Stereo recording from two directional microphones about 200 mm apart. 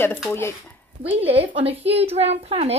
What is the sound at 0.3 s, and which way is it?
Speech, 15° left (ahead or behind).